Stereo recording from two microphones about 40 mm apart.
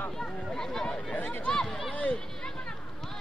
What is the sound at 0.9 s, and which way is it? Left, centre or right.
Chatter, left.